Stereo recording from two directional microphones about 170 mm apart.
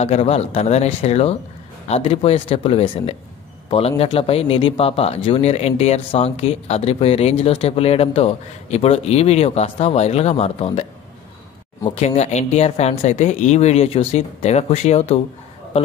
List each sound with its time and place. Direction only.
0.0 s speech: 40° left (ahead or behind)
11.9 s speech: 40° left (ahead or behind)